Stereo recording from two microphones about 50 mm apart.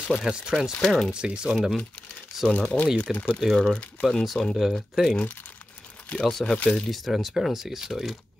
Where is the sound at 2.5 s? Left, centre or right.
Left.